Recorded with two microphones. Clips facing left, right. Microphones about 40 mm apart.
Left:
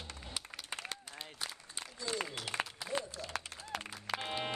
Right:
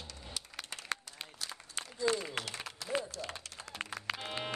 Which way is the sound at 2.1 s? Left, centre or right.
Right.